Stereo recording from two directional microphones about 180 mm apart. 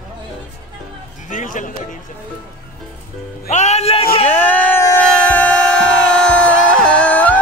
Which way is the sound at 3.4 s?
40° left (ahead or behind).